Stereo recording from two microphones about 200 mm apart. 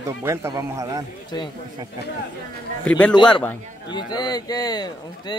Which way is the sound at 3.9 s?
20° left (ahead or behind).